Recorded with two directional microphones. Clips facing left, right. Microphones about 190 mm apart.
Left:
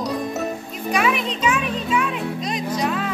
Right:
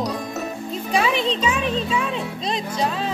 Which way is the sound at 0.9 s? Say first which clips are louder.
Right 1 dB; 30° right (ahead or behind).